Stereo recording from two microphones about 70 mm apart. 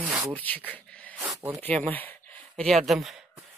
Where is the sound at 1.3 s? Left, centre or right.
Right.